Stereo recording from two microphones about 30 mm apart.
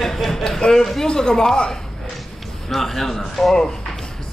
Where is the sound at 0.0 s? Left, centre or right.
Centre.